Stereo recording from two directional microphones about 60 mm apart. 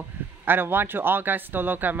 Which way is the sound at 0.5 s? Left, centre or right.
Right.